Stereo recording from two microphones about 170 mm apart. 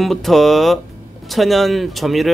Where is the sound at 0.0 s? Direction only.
Centre (ahead or behind).